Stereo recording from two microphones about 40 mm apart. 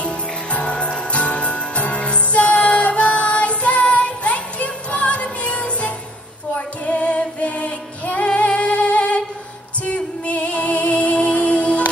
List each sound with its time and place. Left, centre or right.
0.0 s music: left